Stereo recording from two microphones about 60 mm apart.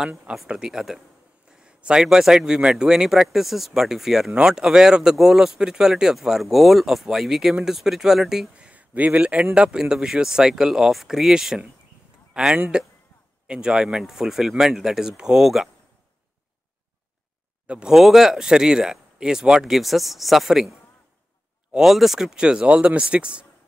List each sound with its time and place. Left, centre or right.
0.2 s speech: centre
1.5 s speech: centre
8.5 s a man's voice: right; by 15.7 s centre
17.6 s speech: centre
17.9 s speech: centre
21.7 s speech: centre